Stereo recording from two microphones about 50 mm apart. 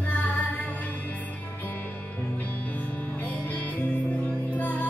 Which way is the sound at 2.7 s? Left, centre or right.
Left.